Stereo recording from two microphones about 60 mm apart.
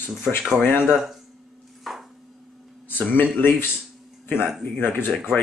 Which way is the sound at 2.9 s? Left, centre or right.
Left.